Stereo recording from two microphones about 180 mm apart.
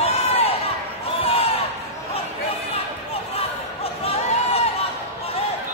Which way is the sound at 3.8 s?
35° left (ahead or behind).